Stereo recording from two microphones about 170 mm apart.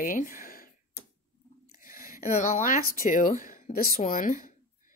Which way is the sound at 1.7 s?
55° left (ahead or behind).